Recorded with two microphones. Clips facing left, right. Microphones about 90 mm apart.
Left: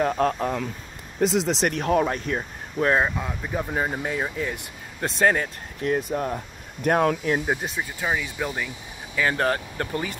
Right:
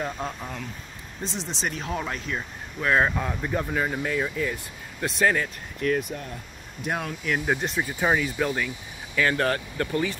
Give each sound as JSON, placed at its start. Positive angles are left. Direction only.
{"t": 0.0, "sound": "speech", "side_deg": 45}
{"t": 1.2, "sound": "speech", "side_deg": 90}
{"t": 2.1, "sound": "speech", "side_deg": 45}
{"t": 3.1, "sound": "speech", "side_deg": 5}
{"t": 3.7, "sound": "speech", "side_deg": 25}
{"t": 6.1, "sound": "speech", "side_deg": 50}
{"t": 7.4, "sound": "speech", "side_deg": 5}
{"t": 9.1, "sound": "speech", "side_deg": 20}